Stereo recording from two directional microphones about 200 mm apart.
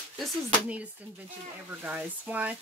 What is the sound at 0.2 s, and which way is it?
Speech, 5° right (ahead or behind).